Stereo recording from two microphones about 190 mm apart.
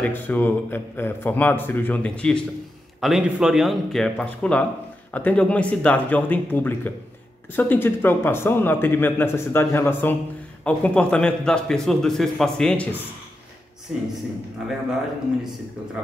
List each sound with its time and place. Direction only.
0.0 s a man's voice: 10° left (ahead or behind)
13.9 s speech: 5° right (ahead or behind)